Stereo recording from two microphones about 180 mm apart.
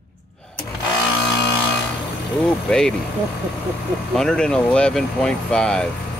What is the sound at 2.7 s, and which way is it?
Speech, 5° left (ahead or behind).